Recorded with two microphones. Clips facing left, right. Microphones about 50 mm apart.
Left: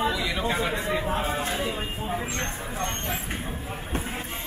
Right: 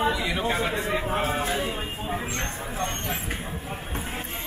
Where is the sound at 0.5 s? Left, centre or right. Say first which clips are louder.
Even; centre.